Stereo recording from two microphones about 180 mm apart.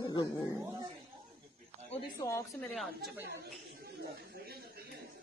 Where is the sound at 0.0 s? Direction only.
25° left (ahead or behind).